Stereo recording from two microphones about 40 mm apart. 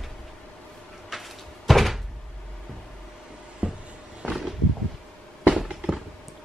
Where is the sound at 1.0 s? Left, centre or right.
Centre.